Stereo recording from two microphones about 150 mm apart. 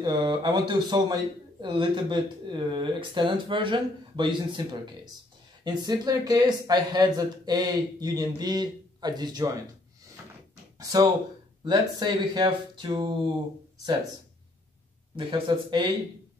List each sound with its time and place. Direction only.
0.0 s a man's voice: 30° right (ahead or behind)
10.8 s speech: 25° right (ahead or behind)
15.1 s a man's voice: 30° right (ahead or behind)